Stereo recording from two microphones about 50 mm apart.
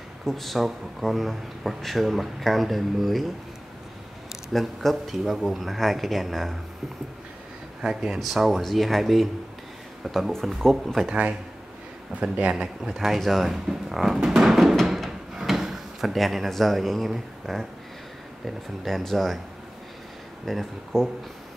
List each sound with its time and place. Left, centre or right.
0.2 s speech: centre
4.5 s speech: centre
7.8 s speech: centre
8.2 s speech: centre
11.1 s speech: right
12.8 s speech: centre
13.7 s music: centre
15.0 s drawer open or close: centre
17.1 s speech: centre
20.4 s speech: centre